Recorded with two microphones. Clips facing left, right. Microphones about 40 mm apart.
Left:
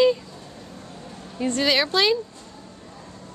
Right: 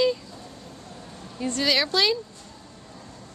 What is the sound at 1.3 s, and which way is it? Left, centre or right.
Speech, centre.